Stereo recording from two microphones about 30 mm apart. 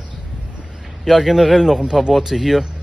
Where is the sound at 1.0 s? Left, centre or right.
Centre.